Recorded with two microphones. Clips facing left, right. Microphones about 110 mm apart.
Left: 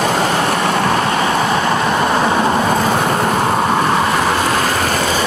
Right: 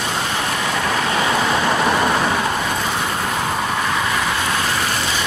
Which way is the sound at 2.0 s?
30° left (ahead or behind).